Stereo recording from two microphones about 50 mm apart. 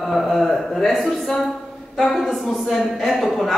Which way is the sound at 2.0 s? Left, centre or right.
Centre.